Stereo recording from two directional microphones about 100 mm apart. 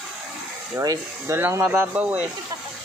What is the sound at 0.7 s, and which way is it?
Speech, 30° right (ahead or behind).